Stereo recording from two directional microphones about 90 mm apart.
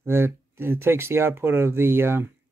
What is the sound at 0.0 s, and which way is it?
Speech, 25° right (ahead or behind).